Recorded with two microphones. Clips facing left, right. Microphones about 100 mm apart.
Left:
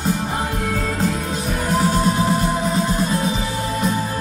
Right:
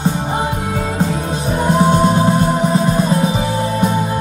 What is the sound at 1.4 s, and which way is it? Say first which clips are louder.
Music: right 6 dB; 25° right (ahead or behind).